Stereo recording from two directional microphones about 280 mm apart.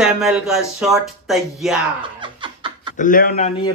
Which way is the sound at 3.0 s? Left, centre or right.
Left.